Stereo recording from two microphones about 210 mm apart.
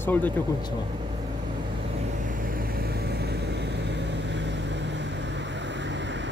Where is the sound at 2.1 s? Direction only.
40° right (ahead or behind).